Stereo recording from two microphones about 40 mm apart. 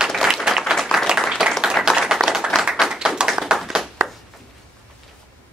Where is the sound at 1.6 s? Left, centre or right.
Centre.